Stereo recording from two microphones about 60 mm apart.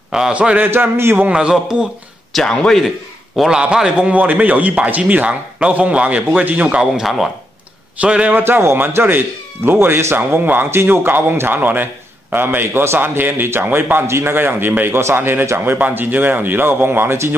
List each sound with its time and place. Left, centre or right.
0.3 s a man's voice: right
0.7 s a man's voice: right
1.3 s a man's voice: centre
2.3 s a man's voice: centre
3.4 s speech: centre
3.7 s a man's voice: centre
4.1 s a man's voice: right
6.8 s speech: centre
8.0 s a man's voice: right
8.3 s a man's voice: right
14.0 s speech: right
14.3 s a man's voice: right
15.0 s speech: right
15.8 s a man's voice: right